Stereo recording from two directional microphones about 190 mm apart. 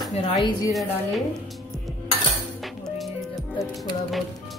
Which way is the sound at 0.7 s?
Centre (ahead or behind).